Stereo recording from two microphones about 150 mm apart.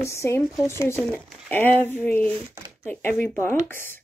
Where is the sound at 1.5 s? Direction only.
15° left (ahead or behind).